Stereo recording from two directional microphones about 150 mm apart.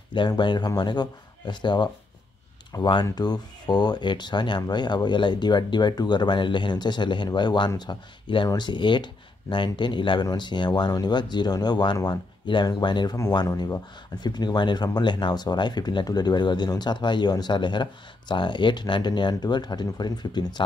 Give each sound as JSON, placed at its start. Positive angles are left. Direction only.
{"t": 0.1, "sound": "speech", "side_deg": 30}